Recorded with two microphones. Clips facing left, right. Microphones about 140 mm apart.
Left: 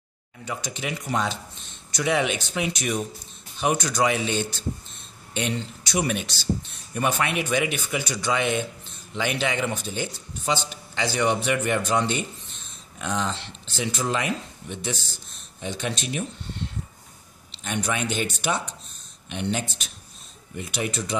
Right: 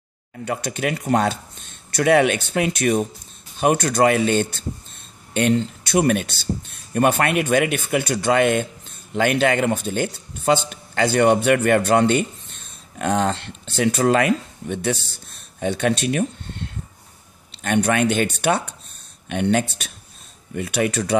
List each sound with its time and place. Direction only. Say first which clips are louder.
0.5 s speech: right 7 dB; 60° right (ahead or behind)
17.6 s speech: right 9 dB; 60° right (ahead or behind)